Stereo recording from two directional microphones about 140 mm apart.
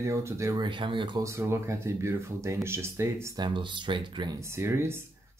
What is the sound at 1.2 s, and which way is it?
Speech, 20° right (ahead or behind).